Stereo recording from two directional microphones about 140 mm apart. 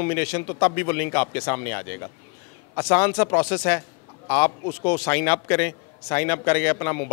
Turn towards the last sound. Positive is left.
turn(degrees=20)  # may be behind; listen again after turning